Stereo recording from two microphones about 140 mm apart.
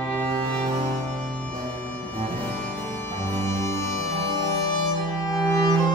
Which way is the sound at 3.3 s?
20° left (ahead or behind).